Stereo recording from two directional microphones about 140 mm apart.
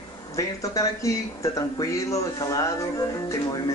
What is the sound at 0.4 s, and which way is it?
Speech, 25° left (ahead or behind).